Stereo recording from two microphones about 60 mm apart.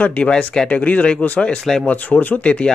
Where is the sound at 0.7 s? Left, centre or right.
Left.